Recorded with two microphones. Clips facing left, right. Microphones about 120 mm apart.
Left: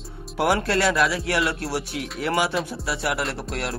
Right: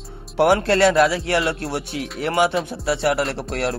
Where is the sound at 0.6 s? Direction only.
30° right (ahead or behind).